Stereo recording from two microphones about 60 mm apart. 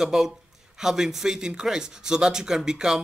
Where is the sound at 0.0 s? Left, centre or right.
Centre.